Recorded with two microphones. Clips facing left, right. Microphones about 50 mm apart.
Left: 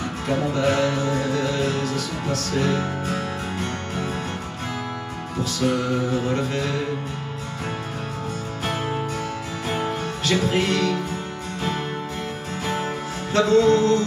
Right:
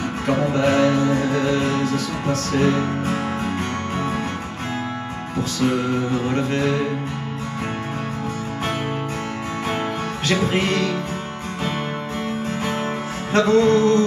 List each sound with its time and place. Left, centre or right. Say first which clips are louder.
0.3 s music: right 3 dB; right
5.6 s music: right 1 dB; right
9.7 s music: even; right
13.3 s music: right 1 dB; right